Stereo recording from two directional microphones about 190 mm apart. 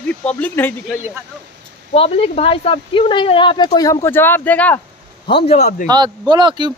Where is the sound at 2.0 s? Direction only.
30° left (ahead or behind); by 4.7 s 10° left (ahead or behind).